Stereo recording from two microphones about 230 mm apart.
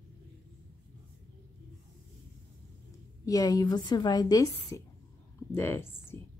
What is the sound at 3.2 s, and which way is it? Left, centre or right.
A woman's voice, centre.